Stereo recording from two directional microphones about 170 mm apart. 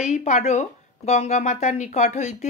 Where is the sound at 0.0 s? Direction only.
45° left (ahead or behind).